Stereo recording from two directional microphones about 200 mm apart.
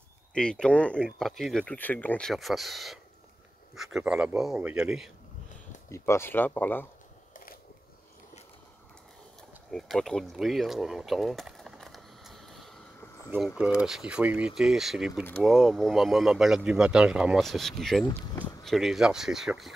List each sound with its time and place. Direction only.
0.3 s speech: 5° left (ahead or behind)
5.9 s speech: 15° left (ahead or behind)
9.7 s a sound: centre (ahead or behind)
13.6 s speech: 5° right (ahead or behind)